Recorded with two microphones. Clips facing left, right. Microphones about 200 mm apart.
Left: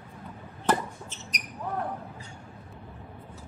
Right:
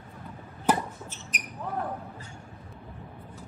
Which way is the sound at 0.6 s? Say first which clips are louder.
Right 1 dB; 10° right (ahead or behind).